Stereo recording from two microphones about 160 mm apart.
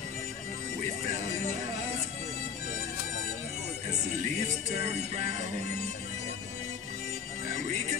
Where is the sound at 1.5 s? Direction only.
45° right (ahead or behind).